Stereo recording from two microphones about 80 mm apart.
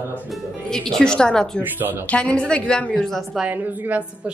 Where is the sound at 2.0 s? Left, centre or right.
Centre.